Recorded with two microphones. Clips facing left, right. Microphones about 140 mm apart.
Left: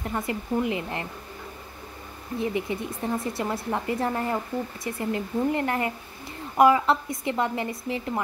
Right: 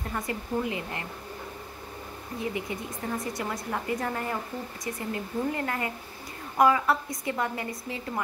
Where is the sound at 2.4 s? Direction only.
25° left (ahead or behind).